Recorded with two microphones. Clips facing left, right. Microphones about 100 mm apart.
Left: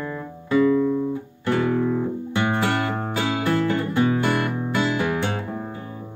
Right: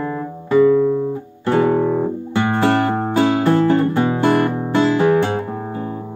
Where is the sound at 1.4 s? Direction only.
35° right (ahead or behind).